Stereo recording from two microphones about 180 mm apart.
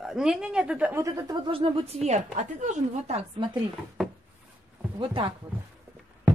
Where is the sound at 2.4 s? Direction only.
45° right (ahead or behind).